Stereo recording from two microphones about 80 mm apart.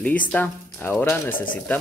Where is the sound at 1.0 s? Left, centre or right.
Left.